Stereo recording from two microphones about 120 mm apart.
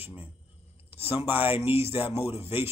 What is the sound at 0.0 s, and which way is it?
Speech, 15° right (ahead or behind).